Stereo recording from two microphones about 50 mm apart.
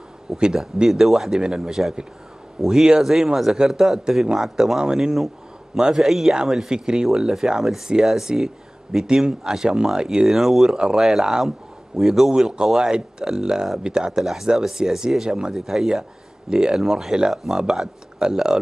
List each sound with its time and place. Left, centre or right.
0.4 s a man's voice: centre
6.7 s a man's voice: centre
14.2 s a man's voice: centre